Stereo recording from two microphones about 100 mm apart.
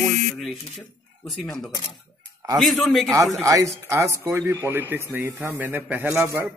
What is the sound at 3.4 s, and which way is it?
Speech, 30° right (ahead or behind).